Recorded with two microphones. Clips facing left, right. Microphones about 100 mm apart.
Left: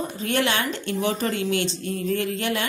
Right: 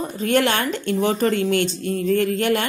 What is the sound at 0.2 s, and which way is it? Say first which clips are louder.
Speech: right 5 dB; 50° right (ahead or behind).